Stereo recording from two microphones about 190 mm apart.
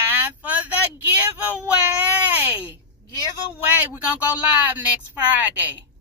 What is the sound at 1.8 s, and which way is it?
Baby cry, 10° right (ahead or behind).